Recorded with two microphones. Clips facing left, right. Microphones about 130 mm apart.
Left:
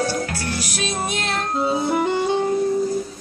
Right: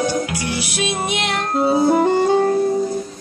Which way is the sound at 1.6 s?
35° right (ahead or behind).